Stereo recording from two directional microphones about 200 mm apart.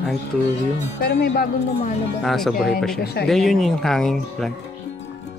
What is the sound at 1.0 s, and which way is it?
Speech, 55° left (ahead or behind).